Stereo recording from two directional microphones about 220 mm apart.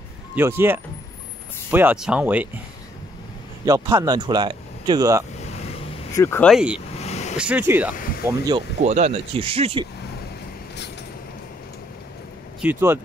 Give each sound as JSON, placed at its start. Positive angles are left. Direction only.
{"t": 0.4, "sound": "speech", "side_deg": -10}
{"t": 3.6, "sound": "speech", "side_deg": -15}
{"t": 6.1, "sound": "speech", "side_deg": 10}
{"t": 6.5, "sound": "speech", "side_deg": -5}
{"t": 7.0, "sound": "vehicle", "side_deg": 30}
{"t": 7.3, "sound": "speech", "side_deg": -5}
{"t": 8.8, "sound": "speech", "side_deg": -30}
{"t": 12.6, "sound": "speech", "side_deg": -10}